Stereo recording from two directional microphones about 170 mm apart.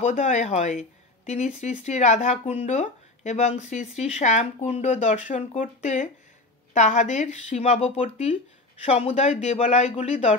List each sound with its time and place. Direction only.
0.0 s speech: 45° left (ahead or behind)